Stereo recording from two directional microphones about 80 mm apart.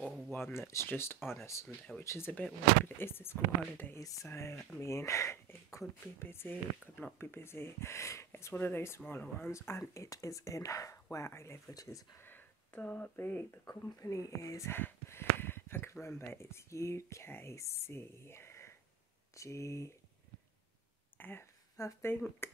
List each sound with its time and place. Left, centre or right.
0.3 s speech: left
4.0 s speech: left
11.7 s speech: left
12.2 s a sound: left
13.1 s speech: left
13.7 s speech: left
14.7 s a sound: left
16.2 s speech: left
21.2 s speech: left
21.8 s speech: left
22.4 s speech: left